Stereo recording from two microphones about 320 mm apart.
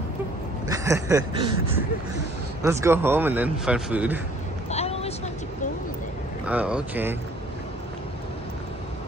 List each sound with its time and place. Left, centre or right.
0.7 s speech: centre
2.6 s speech: centre
4.6 s vehicle: centre
6.4 s speech: centre